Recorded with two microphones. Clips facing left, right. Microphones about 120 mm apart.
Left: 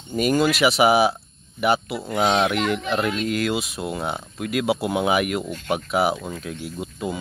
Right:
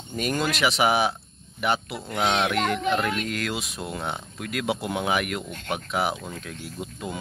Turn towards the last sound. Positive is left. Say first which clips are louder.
# left 5 dB
turn(degrees=10)  # may be behind; listen again after turning